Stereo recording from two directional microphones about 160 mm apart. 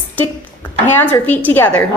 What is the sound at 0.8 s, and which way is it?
A woman's voice, 10° left (ahead or behind).